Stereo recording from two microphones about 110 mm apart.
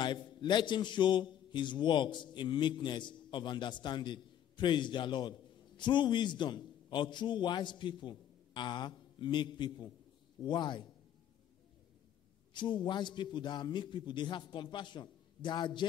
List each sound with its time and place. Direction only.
0.0 s a man's voice: 45° left (ahead or behind)
12.5 s a man's voice: 45° left (ahead or behind)